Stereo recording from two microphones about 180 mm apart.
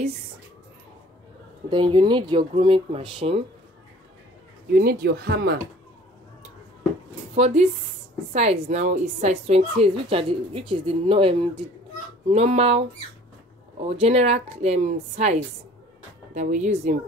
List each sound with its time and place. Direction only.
1.7 s speech: 25° right (ahead or behind)
4.7 s speech: 60° right (ahead or behind)
7.3 s a woman's voice: 40° right (ahead or behind)
8.6 s a woman's voice: 40° right (ahead or behind)
16.3 s speech: 45° right (ahead or behind)